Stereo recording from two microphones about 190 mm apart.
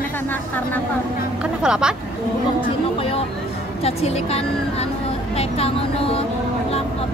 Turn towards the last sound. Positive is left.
turn(degrees=30)  # may be behind; listen again after turning